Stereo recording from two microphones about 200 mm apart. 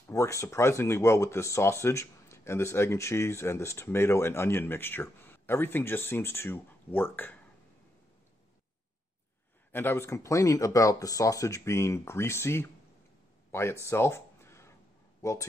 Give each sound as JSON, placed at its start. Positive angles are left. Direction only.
{"t": 0.1, "sound": "speech", "side_deg": 15}
{"t": 9.7, "sound": "speech", "side_deg": 10}
{"t": 13.5, "sound": "a sound", "side_deg": 15}
{"t": 15.2, "sound": "speech", "side_deg": 15}